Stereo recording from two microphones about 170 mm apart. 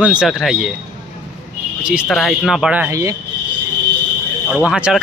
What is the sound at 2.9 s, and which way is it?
Speech, 20° right (ahead or behind).